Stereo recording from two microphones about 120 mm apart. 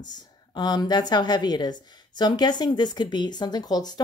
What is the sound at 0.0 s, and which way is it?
Speech, 35° left (ahead or behind).